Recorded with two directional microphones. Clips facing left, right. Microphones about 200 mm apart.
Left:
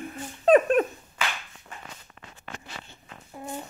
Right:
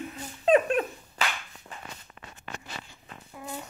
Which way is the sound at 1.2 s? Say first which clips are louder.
Even; 40° right (ahead or behind).